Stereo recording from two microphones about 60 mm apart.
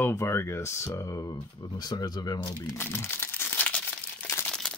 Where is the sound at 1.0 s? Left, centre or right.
Left.